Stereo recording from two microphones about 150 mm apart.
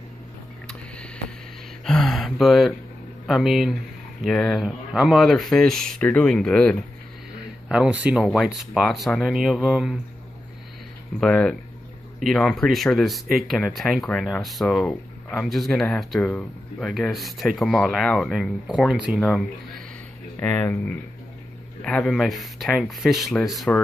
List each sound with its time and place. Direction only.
1.9 s speech: 5° left (ahead or behind)
7.6 s speech: 5° right (ahead or behind)
11.1 s speech: 5° left (ahead or behind)